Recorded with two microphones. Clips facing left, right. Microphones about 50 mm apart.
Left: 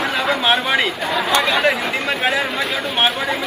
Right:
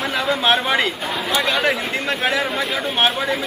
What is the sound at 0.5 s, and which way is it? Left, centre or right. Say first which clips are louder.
Speech: right 1 dB; centre.